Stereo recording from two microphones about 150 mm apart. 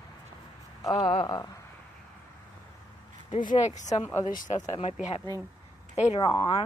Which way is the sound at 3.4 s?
55° left (ahead or behind).